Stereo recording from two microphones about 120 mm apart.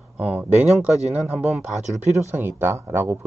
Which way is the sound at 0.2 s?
10° right (ahead or behind).